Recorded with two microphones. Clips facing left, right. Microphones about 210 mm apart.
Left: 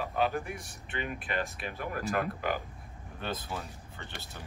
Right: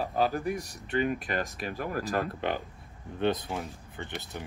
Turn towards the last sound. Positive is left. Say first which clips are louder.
# right 7 dB
turn(degrees=-15)  # may be behind; listen again after turning